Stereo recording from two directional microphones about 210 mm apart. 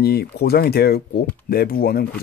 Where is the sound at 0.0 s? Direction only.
50° left (ahead or behind).